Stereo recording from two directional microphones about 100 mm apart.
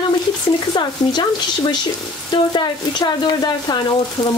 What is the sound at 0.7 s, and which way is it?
Speech, 50° left (ahead or behind).